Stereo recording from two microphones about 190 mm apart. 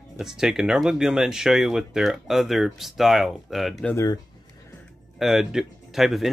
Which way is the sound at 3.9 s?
15° left (ahead or behind).